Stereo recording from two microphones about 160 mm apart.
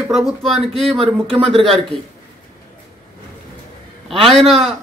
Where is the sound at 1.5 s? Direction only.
Centre (ahead or behind).